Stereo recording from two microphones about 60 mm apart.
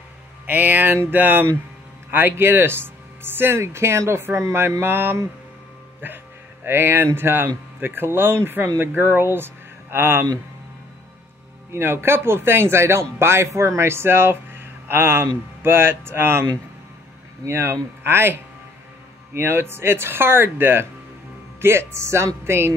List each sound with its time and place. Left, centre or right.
0.5 s speech: right
11.7 s speech: right
17.5 s speech: right